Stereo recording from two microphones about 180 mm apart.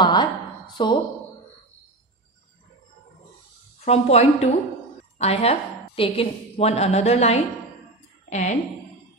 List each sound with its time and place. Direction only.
0.0 s a woman's voice: 25° left (ahead or behind)
3.8 s a woman's voice: 35° left (ahead or behind)